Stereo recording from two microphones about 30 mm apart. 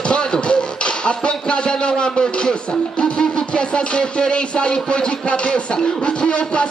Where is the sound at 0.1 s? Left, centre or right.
Left.